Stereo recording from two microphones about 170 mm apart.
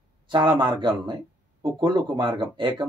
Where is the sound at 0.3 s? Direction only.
30° right (ahead or behind).